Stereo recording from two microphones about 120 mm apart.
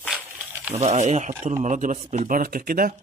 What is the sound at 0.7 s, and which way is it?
Speech, 70° right (ahead or behind).